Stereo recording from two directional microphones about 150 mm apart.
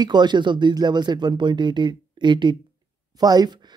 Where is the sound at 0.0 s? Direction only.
30° right (ahead or behind).